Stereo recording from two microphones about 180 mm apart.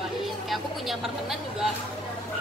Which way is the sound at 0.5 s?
Centre (ahead or behind).